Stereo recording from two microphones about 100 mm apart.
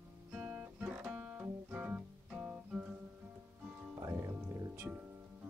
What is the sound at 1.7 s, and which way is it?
Music, 10° right (ahead or behind).